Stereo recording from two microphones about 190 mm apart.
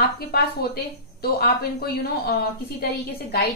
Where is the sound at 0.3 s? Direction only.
55° left (ahead or behind).